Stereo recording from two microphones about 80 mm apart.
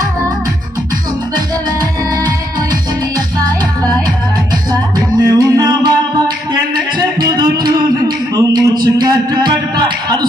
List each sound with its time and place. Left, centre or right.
3.4 s music: right